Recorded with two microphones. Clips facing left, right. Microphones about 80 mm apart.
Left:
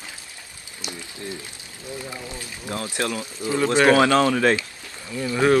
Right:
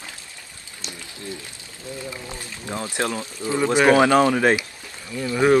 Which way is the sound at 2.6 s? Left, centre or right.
Right.